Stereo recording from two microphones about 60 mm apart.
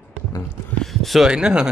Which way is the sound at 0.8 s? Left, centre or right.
Centre.